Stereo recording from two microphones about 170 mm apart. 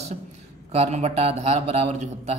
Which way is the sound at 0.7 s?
40° right (ahead or behind).